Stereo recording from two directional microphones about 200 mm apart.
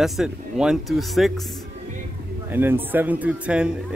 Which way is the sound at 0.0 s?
Centre (ahead or behind).